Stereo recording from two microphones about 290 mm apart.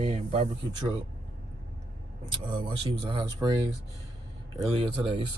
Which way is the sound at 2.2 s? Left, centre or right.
Centre.